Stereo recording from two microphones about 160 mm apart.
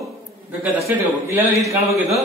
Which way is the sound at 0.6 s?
15° right (ahead or behind).